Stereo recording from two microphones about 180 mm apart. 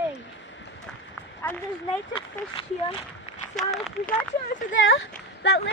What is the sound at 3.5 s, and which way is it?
Speech, centre (ahead or behind).